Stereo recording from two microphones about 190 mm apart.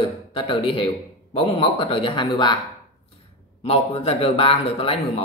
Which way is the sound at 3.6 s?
35° left (ahead or behind).